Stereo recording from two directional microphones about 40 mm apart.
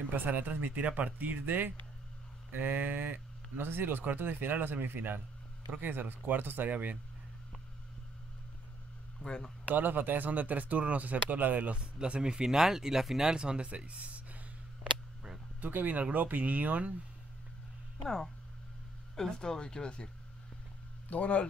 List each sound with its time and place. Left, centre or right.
0.1 s speech: right
1.4 s speech: right
3.5 s speech: right
9.2 s speech: centre
9.7 s speech: right
11.7 s speech: right; by 13.2 s centre
13.2 s speech: right
13.7 s speech: right
15.6 s speech: right
18.0 s speech: centre
21.1 s speech: left